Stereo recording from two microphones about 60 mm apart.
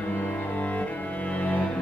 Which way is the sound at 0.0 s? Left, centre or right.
Left.